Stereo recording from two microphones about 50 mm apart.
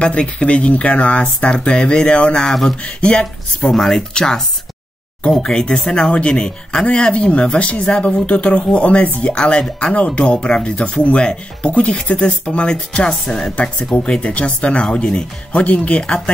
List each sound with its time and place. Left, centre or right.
0.0 s speech: left
1.7 s speech: centre
2.4 s speech: centre
2.8 s speech: centre
3.6 s speech: centre
5.4 s speech: centre; by 9.2 s left
9.2 s speech: centre